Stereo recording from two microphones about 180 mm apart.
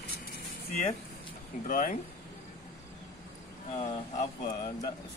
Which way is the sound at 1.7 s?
50° left (ahead or behind).